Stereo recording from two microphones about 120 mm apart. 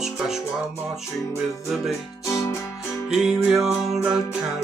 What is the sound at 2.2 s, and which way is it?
Music, 25° left (ahead or behind).